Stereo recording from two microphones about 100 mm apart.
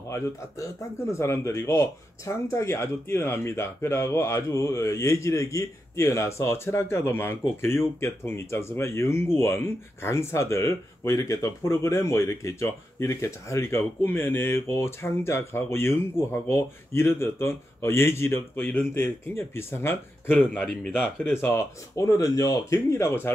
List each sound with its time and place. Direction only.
1.1 s speech: 30° left (ahead or behind)